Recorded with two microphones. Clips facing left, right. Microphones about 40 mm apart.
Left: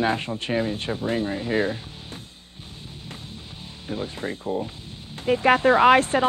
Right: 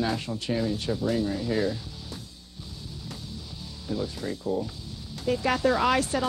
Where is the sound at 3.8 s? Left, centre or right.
Left.